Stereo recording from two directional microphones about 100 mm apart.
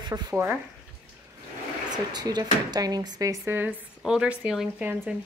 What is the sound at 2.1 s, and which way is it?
Speech, 45° right (ahead or behind).